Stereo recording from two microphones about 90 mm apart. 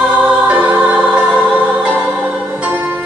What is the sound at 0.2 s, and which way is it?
Music, 15° right (ahead or behind).